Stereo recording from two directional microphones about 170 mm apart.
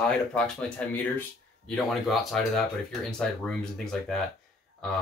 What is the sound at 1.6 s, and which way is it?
Speech, centre (ahead or behind).